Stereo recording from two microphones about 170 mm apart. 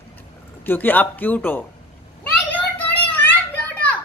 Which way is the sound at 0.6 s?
10° left (ahead or behind).